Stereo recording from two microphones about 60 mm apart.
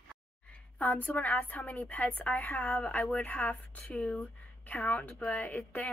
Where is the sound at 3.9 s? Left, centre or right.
Centre.